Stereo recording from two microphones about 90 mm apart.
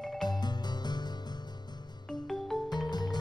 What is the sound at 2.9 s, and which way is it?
Music, 50° left (ahead or behind).